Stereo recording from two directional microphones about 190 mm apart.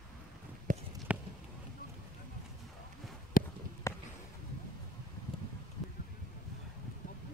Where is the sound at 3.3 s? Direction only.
50° left (ahead or behind).